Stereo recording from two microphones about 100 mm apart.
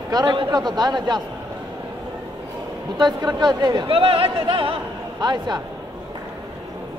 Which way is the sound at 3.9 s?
65° right (ahead or behind).